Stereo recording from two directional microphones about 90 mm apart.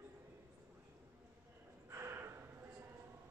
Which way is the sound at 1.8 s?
30° right (ahead or behind).